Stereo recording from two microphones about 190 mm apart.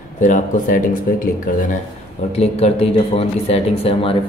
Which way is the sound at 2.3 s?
35° left (ahead or behind).